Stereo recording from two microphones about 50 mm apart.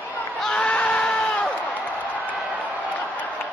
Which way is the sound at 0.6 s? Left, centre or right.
Left.